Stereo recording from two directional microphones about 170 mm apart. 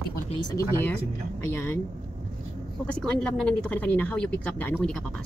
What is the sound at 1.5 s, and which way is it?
Speech, 15° left (ahead or behind).